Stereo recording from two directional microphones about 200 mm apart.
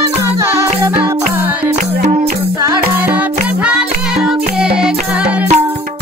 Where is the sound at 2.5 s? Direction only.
10° right (ahead or behind).